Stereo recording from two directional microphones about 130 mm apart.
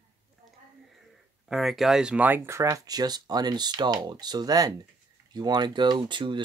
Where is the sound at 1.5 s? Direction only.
Centre (ahead or behind); by 6.4 s 35° right (ahead or behind).